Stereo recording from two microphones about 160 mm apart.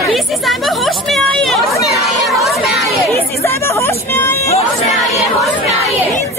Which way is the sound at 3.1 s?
15° left (ahead or behind).